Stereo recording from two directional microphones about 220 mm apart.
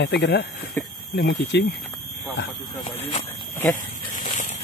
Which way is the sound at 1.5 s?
50° left (ahead or behind).